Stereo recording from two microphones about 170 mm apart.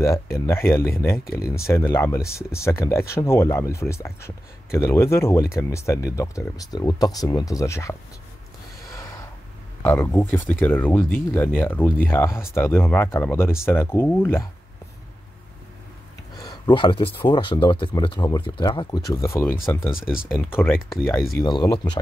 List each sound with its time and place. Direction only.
0.0 s speech: 15° left (ahead or behind)
9.8 s speech: 10° left (ahead or behind)
16.3 s speech: 25° left (ahead or behind)
19.9 s speech: 5° right (ahead or behind)
20.2 s speech: 10° left (ahead or behind)
21.4 s speech: 25° left (ahead or behind)